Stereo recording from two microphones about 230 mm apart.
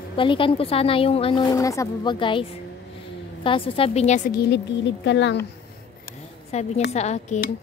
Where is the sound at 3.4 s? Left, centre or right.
Left.